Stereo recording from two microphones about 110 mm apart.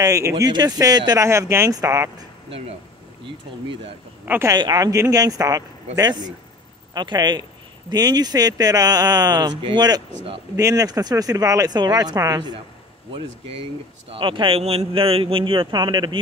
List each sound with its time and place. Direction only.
0.0 s speech: 30° right (ahead or behind)
4.5 s speech: 35° right (ahead or behind)
13.1 s a man's voice: 55° right (ahead or behind)